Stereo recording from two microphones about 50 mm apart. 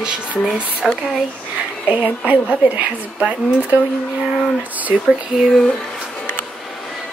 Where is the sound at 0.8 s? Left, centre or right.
Centre.